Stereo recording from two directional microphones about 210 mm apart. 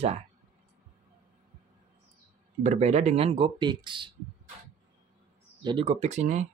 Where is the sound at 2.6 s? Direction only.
30° right (ahead or behind).